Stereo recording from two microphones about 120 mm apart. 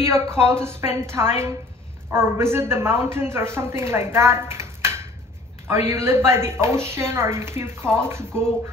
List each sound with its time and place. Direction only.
0.0 s a woman's voice: 20° right (ahead or behind)